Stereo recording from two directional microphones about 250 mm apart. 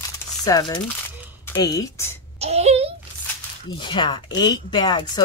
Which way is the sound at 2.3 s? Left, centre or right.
Right.